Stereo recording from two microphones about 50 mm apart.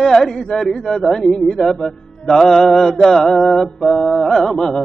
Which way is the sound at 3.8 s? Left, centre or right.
Centre.